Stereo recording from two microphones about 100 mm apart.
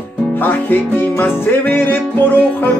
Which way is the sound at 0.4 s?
20° left (ahead or behind).